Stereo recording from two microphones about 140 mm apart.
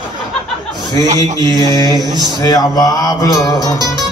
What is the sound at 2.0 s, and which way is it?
Speech, 30° right (ahead or behind).